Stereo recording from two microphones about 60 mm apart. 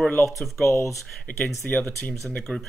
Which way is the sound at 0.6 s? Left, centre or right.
Left.